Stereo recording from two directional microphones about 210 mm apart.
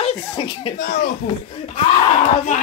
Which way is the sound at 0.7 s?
40° left (ahead or behind).